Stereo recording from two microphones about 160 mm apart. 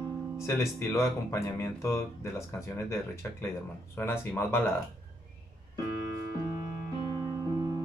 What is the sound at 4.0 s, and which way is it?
Speech, 15° left (ahead or behind).